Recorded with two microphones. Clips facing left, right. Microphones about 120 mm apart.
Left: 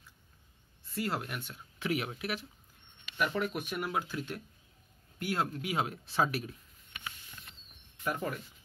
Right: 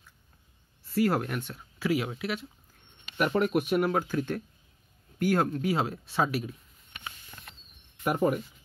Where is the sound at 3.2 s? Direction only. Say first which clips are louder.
Right 7 dB; 50° right (ahead or behind).